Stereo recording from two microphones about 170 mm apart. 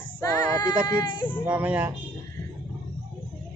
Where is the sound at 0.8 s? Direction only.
25° left (ahead or behind).